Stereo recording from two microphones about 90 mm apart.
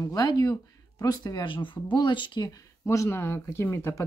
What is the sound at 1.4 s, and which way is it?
Speech, 65° left (ahead or behind).